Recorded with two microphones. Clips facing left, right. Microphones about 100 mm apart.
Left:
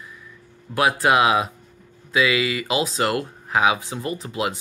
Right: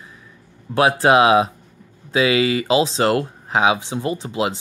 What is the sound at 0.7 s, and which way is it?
Speech, 30° right (ahead or behind).